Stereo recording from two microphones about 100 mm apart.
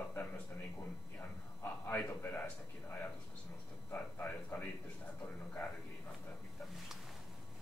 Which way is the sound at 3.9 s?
20° left (ahead or behind).